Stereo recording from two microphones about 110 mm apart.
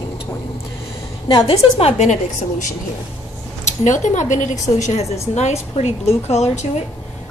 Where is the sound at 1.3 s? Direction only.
60° left (ahead or behind); by 2.1 s 80° left.